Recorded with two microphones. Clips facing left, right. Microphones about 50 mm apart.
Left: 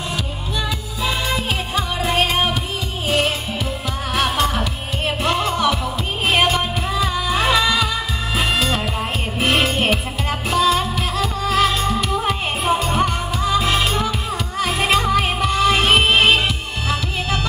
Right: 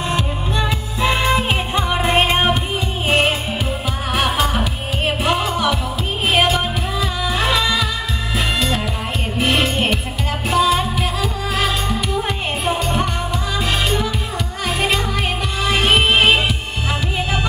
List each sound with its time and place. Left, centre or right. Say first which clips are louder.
0.1 s music: right 4 dB; right
4.1 s music: right 1 dB; centre
10.5 s music: right 1 dB; centre